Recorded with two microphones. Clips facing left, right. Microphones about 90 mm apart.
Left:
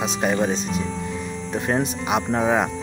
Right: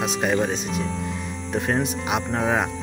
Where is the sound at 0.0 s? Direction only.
5° right (ahead or behind).